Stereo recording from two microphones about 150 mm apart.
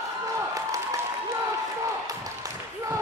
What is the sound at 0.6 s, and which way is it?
Applause, 20° right (ahead or behind).